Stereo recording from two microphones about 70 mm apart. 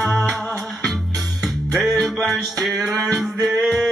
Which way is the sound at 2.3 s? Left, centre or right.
Centre.